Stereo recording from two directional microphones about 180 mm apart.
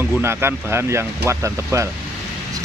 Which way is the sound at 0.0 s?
10° right (ahead or behind).